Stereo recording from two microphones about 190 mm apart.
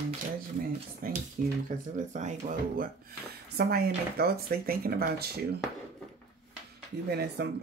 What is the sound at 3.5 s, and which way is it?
Speech, 55° right (ahead or behind).